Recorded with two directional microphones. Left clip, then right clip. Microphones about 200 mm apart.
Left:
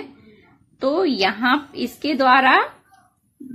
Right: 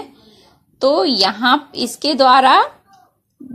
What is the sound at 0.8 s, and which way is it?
A woman's voice, 25° right (ahead or behind).